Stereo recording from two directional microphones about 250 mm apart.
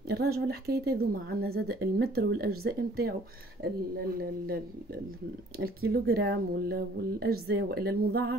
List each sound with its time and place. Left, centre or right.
0.1 s speech: right
4.2 s speech: right